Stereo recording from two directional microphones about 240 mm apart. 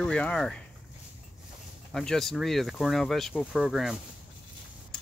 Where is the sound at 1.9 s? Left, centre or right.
Centre.